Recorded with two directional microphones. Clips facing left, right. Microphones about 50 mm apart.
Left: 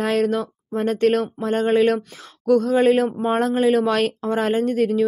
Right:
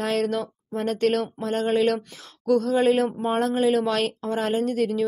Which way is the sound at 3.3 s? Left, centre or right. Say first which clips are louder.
Left 3 dB; left.